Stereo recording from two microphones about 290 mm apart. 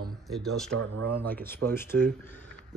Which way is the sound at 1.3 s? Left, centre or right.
Centre.